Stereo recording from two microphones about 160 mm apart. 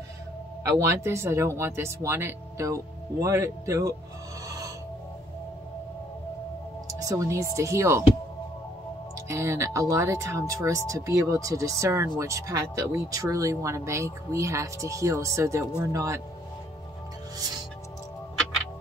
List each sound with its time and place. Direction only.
0.7 s speech: 20° right (ahead or behind)
6.9 s speech: 20° right (ahead or behind)
9.3 s speech: 20° right (ahead or behind)